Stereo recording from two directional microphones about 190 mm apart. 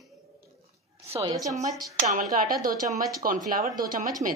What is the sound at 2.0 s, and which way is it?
Speech, 45° right (ahead or behind).